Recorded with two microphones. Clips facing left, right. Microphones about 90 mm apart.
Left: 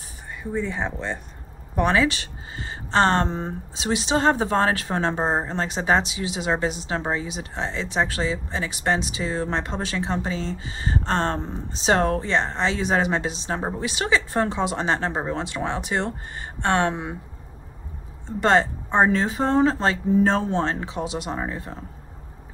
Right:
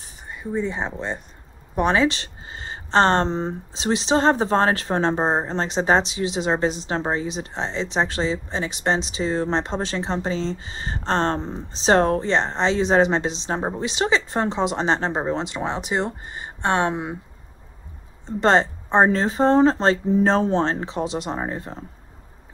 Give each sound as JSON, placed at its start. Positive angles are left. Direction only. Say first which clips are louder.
{"t": 0.4, "sound": "speech", "louder": "right 1 dB", "side_deg": -20}
{"t": 18.4, "sound": "speech", "louder": "right 1 dB", "side_deg": -25}
{"t": 19.0, "sound": "speech", "louder": "right 3 dB", "side_deg": -35}